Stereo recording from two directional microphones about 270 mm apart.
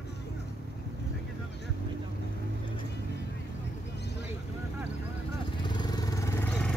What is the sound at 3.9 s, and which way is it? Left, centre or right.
Vehicle, left.